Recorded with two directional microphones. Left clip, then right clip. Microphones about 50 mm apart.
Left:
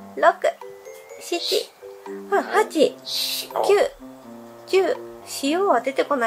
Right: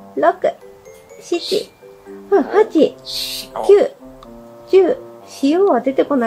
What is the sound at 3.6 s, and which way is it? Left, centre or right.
A woman's voice, centre.